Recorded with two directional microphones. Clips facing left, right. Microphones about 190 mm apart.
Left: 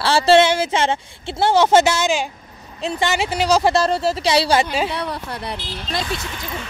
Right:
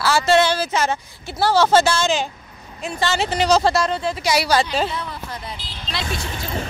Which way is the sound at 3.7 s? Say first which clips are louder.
Left 3 dB; 40° left (ahead or behind).